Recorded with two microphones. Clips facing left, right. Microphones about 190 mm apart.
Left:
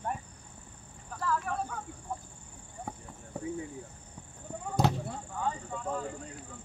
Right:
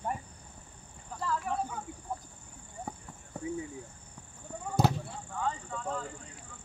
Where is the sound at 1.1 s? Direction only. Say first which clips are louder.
Even; 15° right (ahead or behind).